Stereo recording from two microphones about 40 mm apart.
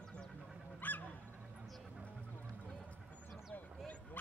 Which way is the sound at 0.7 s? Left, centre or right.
Left.